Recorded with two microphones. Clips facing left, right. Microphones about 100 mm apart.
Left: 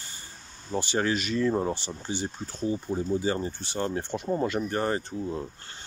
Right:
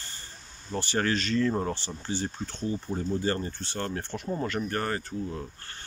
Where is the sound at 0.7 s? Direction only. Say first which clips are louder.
Left 1 dB; 15° left (ahead or behind).